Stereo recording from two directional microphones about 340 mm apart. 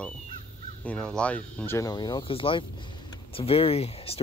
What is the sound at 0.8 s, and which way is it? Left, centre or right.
Speech, centre.